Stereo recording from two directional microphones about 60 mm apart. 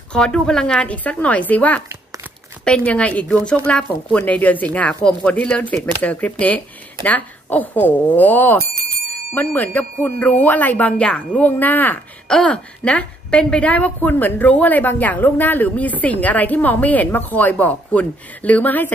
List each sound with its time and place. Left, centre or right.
0.1 s a woman's voice: centre; by 10.9 s left
10.9 s a woman's voice: centre
12.3 s a woman's voice: centre